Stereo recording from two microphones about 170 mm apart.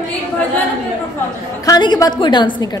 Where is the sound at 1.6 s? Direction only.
25° left (ahead or behind).